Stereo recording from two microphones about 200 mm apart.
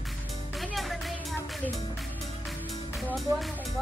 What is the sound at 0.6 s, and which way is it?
Music, centre (ahead or behind).